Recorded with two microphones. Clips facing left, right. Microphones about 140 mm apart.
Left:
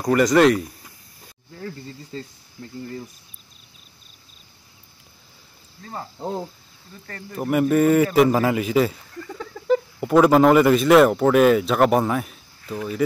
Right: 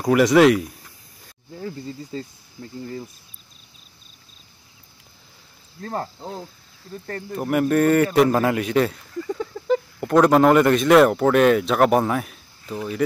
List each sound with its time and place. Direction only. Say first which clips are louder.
0.0 s a man's voice: right 1 dB; 5° right (ahead or behind)
5.8 s speech: right 6 dB; 65° right (ahead or behind)
6.1 s cricket: left 6 dB; 25° left (ahead or behind)
7.3 s a man's voice: left 1 dB; centre (ahead or behind)